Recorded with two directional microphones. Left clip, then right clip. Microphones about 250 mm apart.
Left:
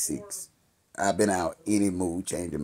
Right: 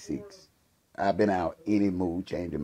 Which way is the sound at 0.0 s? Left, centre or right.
Centre.